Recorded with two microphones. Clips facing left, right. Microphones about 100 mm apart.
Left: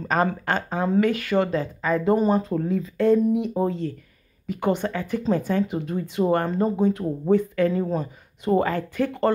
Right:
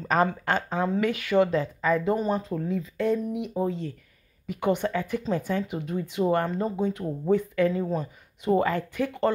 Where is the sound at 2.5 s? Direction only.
15° left (ahead or behind).